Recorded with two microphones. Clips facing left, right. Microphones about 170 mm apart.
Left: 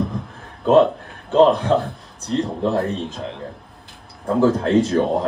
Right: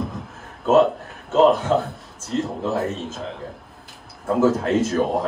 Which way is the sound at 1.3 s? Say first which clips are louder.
Left 2 dB; 5° right (ahead or behind).